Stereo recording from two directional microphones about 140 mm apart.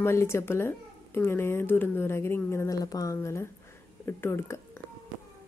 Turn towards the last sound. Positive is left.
turn(degrees=15)  # may be behind; listen again after turning